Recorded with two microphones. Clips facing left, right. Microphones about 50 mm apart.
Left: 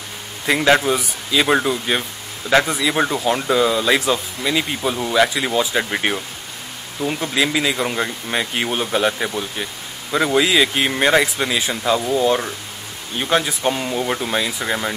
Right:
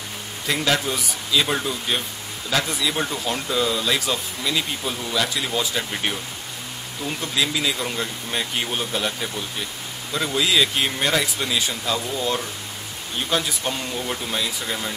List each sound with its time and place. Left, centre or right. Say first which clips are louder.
0.5 s speech: left 7 dB; left
7.0 s speech: left 5 dB; left